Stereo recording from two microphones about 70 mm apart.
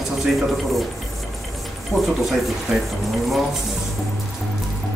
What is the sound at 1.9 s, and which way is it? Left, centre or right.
Speech, left.